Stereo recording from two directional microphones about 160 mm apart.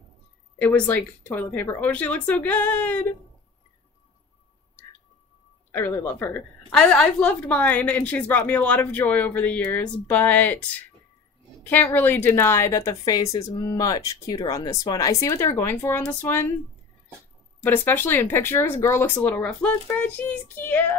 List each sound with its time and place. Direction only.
0.6 s a woman's voice: 10° left (ahead or behind)
5.7 s a woman's voice: 15° left (ahead or behind)
11.6 s a woman's voice: 10° left (ahead or behind)
17.6 s a woman's voice: 15° left (ahead or behind)